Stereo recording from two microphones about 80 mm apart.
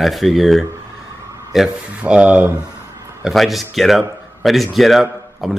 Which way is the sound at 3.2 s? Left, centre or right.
Centre.